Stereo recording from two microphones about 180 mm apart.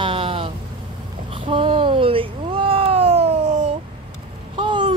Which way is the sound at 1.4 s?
30° right (ahead or behind).